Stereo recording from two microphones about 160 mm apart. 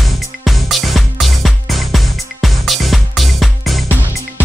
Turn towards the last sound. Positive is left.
turn(degrees=0)  # may be behind; listen again after turning